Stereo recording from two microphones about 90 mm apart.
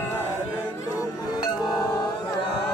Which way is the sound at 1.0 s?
45° left (ahead or behind).